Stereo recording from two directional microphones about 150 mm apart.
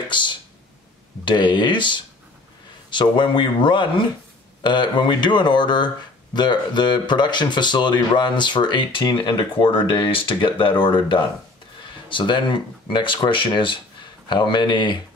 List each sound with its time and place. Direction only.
0.1 s speech: 30° left (ahead or behind)